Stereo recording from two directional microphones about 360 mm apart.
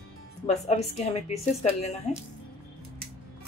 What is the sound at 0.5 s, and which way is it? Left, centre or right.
A woman's voice, centre.